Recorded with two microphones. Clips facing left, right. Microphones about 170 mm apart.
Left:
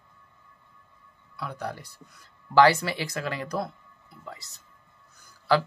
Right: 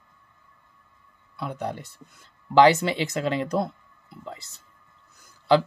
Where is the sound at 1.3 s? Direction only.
20° right (ahead or behind).